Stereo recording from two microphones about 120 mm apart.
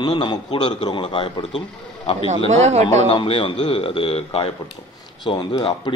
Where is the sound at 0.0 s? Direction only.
40° left (ahead or behind).